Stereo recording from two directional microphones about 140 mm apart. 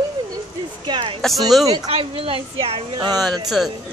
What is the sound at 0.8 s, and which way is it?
Speech, 35° right (ahead or behind).